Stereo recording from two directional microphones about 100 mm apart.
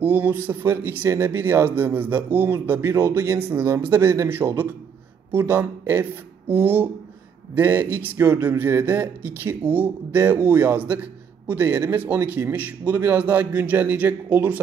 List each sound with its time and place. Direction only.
0.0 s a man's voice: 15° right (ahead or behind)